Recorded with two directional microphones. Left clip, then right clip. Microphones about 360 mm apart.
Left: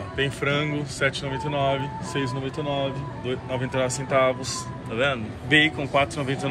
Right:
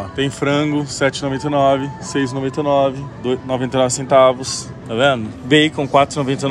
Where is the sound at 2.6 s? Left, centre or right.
Right.